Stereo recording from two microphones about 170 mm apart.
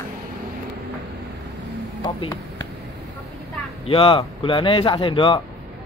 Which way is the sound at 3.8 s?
30° left (ahead or behind).